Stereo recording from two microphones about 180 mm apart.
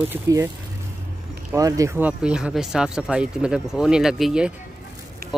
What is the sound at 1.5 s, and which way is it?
Speech, 20° right (ahead or behind).